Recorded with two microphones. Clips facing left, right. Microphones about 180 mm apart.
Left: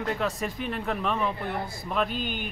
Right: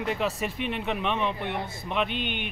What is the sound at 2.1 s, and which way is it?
Speech, 70° right (ahead or behind).